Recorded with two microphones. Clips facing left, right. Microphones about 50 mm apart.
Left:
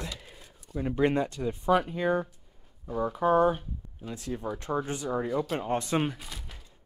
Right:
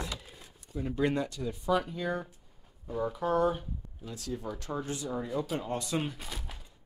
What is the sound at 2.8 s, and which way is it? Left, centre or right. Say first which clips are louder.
Speech: left 5 dB; centre.